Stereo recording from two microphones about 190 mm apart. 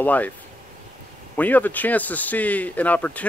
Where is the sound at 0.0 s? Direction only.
10° left (ahead or behind).